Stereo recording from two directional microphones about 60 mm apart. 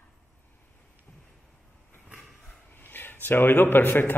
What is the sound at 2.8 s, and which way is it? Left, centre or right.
Speech, left.